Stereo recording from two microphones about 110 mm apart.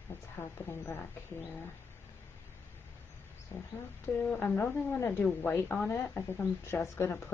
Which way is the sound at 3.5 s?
35° left (ahead or behind).